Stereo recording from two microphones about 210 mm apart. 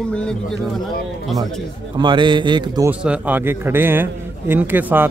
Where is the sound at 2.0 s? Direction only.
20° right (ahead or behind).